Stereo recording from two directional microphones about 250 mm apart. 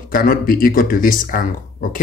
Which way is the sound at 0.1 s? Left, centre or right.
Left.